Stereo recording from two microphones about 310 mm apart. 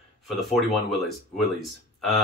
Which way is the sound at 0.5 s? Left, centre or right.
Centre.